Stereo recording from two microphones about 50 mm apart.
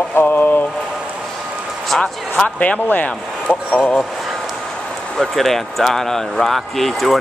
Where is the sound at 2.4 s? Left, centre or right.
Left.